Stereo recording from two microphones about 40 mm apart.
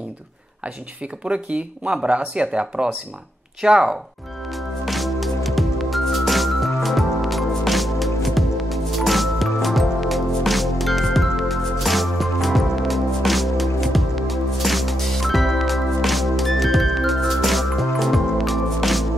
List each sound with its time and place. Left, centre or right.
1.2 s speech: right
4.8 s music: centre